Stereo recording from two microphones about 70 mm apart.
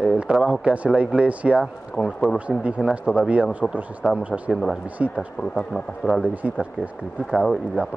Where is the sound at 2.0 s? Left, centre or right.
Centre.